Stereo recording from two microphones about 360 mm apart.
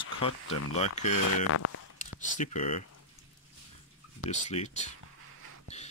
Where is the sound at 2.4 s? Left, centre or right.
Centre.